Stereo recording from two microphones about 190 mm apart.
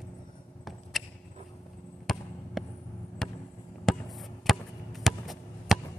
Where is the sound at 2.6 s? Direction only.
Centre (ahead or behind).